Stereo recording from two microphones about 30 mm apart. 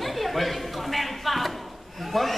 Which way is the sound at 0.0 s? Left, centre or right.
Centre.